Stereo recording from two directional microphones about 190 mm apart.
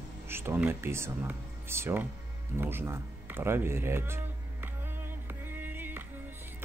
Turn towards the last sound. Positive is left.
turn(degrees=-10)  # may be behind; listen again after turning